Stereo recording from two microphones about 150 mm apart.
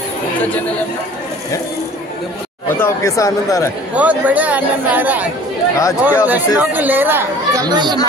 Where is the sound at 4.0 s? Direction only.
10° right (ahead or behind).